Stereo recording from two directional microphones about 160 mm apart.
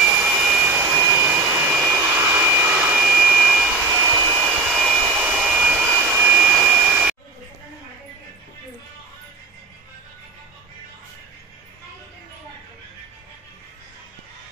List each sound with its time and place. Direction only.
0.0 s vacuum cleaner: 5° right (ahead or behind)
3.8 s wind chime: 15° right (ahead or behind)
4.4 s jet engine: 5° right (ahead or behind)
6.5 s a sound: 10° right (ahead or behind)